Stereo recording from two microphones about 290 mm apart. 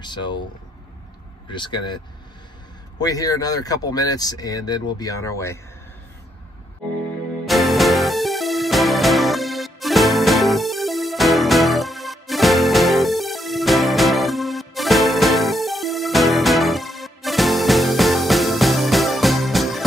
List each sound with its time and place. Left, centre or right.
0.0 s speech: centre
1.5 s speech: centre
3.0 s speech: centre
7.4 s music: centre